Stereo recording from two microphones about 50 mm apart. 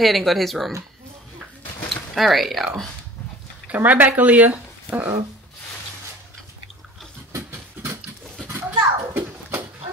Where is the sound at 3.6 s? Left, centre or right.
Right.